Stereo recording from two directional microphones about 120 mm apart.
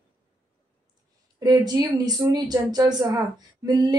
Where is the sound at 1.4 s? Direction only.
35° right (ahead or behind).